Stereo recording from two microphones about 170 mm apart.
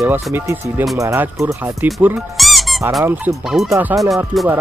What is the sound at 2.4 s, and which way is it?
Squeak, centre (ahead or behind).